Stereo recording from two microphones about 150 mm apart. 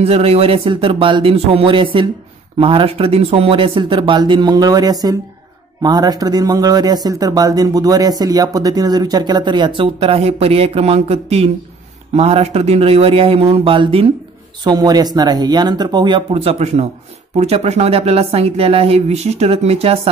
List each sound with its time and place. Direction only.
0.0 s speech: 40° right (ahead or behind)